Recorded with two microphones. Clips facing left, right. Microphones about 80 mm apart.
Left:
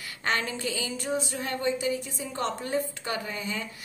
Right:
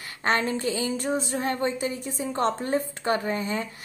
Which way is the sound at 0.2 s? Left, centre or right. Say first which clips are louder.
Right 5 dB; right.